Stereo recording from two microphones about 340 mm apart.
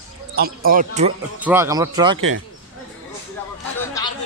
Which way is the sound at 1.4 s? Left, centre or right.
Centre.